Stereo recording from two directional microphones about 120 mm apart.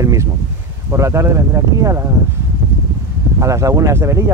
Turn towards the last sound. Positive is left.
turn(degrees=-25)  # may be behind; listen again after turning